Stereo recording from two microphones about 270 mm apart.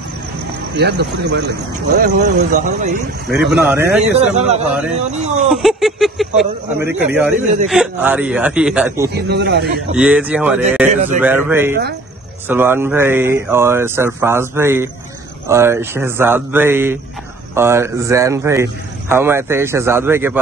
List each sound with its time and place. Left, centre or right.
0.7 s speech: right
3.3 s speech: centre
4.0 s speech: right
5.5 s a man's voice: centre
9.1 s speech: right
9.9 s a man's voice: centre